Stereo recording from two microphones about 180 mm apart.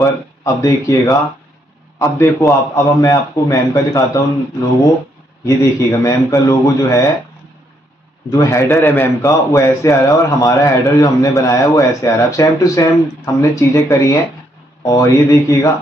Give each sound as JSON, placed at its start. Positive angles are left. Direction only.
{"t": 0.0, "sound": "a man's voice", "side_deg": 20}
{"t": 5.4, "sound": "a man's voice", "side_deg": 20}
{"t": 8.3, "sound": "a man's voice", "side_deg": 15}